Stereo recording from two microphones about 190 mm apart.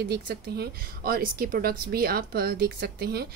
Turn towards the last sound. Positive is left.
turn(degrees=-55)  # may be behind; listen again after turning